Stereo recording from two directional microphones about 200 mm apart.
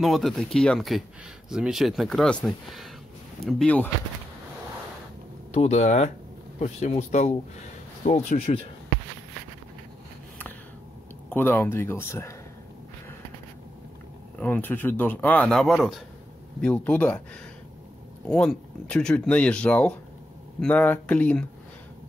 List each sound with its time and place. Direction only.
0.0 s speech: centre (ahead or behind)
5.5 s speech: 35° left (ahead or behind)
11.2 s speech: 10° left (ahead or behind)
14.4 s speech: 10° left (ahead or behind)
18.2 s speech: 5° left (ahead or behind)